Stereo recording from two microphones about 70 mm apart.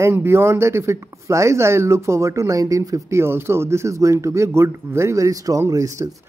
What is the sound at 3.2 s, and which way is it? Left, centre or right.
Speech, right.